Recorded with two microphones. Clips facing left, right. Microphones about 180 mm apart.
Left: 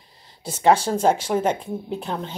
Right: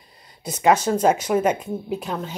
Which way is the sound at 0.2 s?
30° left (ahead or behind).